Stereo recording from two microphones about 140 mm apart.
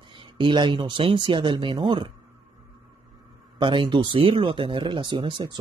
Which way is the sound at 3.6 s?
35° right (ahead or behind).